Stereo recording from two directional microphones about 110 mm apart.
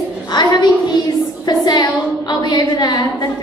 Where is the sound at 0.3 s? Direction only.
40° left (ahead or behind).